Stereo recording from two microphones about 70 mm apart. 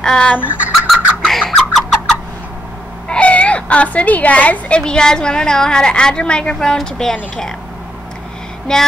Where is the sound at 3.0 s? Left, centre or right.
Centre.